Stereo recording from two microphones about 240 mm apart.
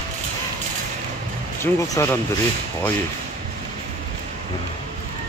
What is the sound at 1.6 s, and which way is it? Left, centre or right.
Speech, centre.